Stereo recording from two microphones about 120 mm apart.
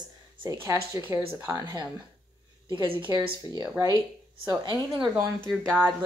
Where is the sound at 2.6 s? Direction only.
45° right (ahead or behind).